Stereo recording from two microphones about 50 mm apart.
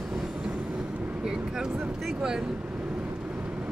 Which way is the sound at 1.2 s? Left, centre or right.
Centre.